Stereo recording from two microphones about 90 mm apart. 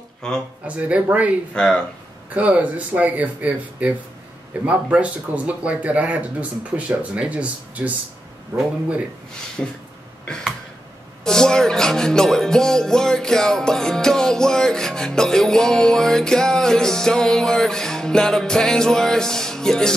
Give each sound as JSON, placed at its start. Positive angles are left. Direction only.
{"t": 0.2, "sound": "speech", "side_deg": 10}
{"t": 0.7, "sound": "speech", "side_deg": -15}
{"t": 1.5, "sound": "speech", "side_deg": 10}
{"t": 2.3, "sound": "speech", "side_deg": -15}
{"t": 10.2, "sound": "a sound", "side_deg": 10}
{"t": 11.2, "sound": "speech", "side_deg": 5}